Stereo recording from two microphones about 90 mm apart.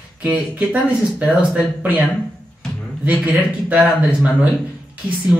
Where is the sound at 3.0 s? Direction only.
15° right (ahead or behind).